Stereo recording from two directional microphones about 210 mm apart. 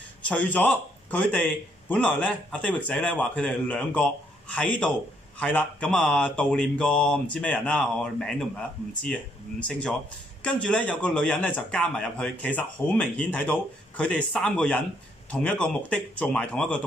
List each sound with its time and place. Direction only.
0.2 s a man's voice: 5° left (ahead or behind)
10.4 s a man's voice: 5° left (ahead or behind)